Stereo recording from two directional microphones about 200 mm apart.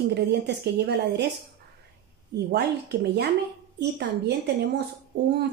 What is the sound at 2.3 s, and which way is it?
A woman's voice, 55° right (ahead or behind).